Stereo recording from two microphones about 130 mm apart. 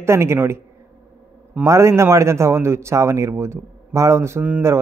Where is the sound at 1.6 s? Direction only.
20° right (ahead or behind).